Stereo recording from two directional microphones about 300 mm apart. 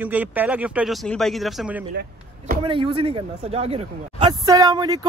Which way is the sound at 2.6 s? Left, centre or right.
Centre.